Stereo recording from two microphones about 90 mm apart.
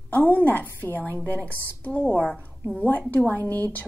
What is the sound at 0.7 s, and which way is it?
Speech, 25° right (ahead or behind).